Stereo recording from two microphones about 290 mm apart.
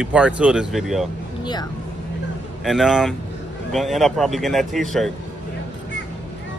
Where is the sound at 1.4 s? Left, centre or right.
Centre.